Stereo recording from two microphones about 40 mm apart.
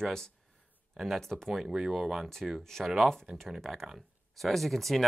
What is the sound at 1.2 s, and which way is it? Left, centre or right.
Speech, centre.